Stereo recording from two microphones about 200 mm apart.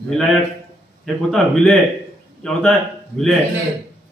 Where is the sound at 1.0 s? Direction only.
5° left (ahead or behind).